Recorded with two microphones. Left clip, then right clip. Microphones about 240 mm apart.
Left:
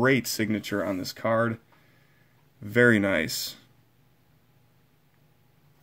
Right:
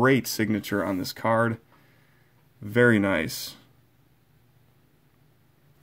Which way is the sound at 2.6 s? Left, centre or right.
Centre.